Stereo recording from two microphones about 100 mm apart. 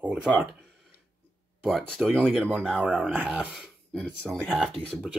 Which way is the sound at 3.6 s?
5° left (ahead or behind).